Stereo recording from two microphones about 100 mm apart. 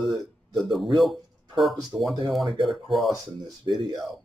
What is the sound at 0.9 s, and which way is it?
Speech, centre (ahead or behind).